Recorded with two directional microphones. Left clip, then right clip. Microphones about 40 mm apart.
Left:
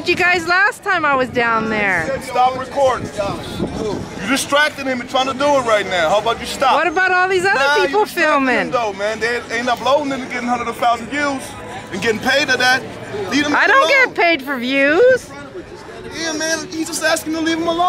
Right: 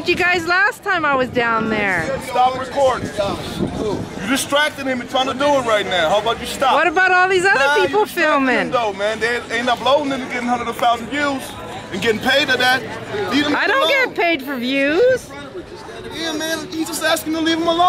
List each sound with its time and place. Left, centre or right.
0.0 s speech: left
1.9 s a man's voice: centre
3.7 s a man's voice: centre
13.6 s speech: left
16.2 s a man's voice: left; by 17.8 s centre